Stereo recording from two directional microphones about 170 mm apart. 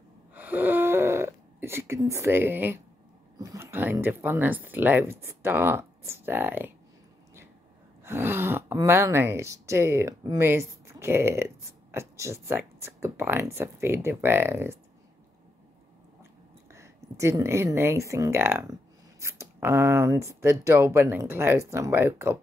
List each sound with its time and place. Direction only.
0.3 s a sound: 10° right (ahead or behind)
3.3 s speech: 20° right (ahead or behind)
8.0 s speech: 15° right (ahead or behind)
16.7 s speech: 15° right (ahead or behind)